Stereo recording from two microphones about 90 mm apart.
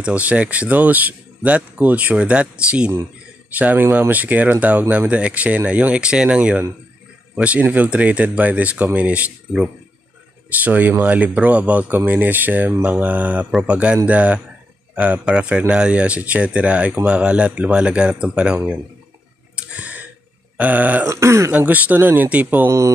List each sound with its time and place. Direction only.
0.0 s speech: 15° right (ahead or behind)
3.8 s speech: 30° right (ahead or behind)
4.1 s speech: 20° right (ahead or behind)
19.5 s clicking: 15° right (ahead or behind)
20.5 s speech: 15° right (ahead or behind)
21.1 s speech: 30° right (ahead or behind)
21.5 s speech: 20° right (ahead or behind)